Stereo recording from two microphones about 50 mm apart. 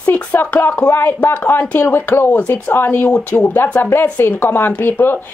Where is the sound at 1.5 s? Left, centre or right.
Left.